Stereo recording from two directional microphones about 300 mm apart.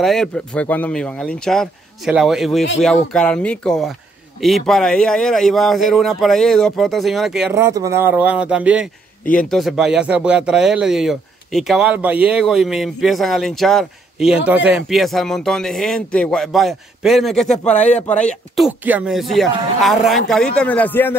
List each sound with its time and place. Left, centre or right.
0.0 s speech: centre
17.6 s speech: left
18.6 s speech: centre